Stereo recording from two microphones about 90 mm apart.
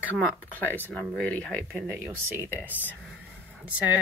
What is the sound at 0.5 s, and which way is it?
Speech, 20° left (ahead or behind).